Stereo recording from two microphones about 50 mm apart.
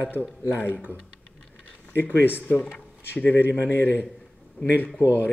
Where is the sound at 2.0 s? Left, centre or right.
Left.